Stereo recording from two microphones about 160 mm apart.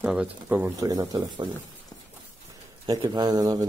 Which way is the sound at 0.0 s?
10° right (ahead or behind).